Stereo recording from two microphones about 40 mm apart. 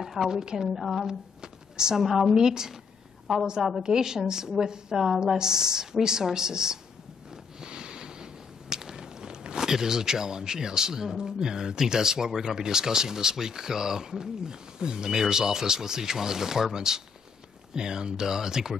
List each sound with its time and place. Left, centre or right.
0.0 s a woman's voice: centre
0.7 s a woman's voice: centre
1.0 s a sound: centre
2.0 s a woman's voice: centre
2.3 s a woman's voice: centre
4.9 s a woman's voice: centre
5.4 s speech: centre
7.6 s a sound: centre
17.7 s speech: centre